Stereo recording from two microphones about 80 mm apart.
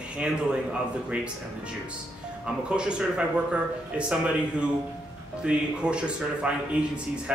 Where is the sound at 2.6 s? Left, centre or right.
Centre.